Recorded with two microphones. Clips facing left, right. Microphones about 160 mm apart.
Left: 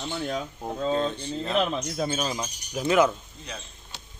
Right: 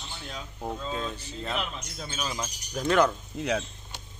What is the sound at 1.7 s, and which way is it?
Speech, 60° left (ahead or behind).